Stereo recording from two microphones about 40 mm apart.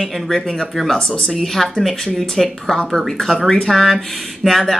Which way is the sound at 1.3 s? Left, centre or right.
Centre.